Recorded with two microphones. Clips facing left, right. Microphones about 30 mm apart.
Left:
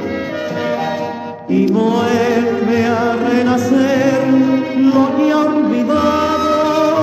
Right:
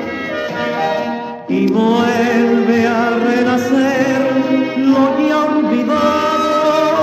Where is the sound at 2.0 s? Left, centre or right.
Centre.